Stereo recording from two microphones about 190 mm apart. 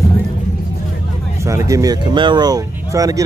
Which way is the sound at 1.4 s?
15° right (ahead or behind).